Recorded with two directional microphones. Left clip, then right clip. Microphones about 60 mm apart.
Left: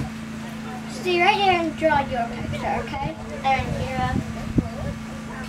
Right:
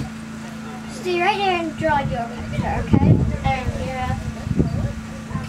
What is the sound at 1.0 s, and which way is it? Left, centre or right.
Speech, left.